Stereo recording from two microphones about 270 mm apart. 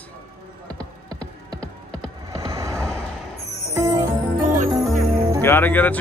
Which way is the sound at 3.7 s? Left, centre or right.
Centre.